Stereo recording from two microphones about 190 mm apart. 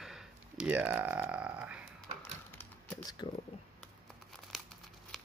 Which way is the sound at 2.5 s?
10° left (ahead or behind).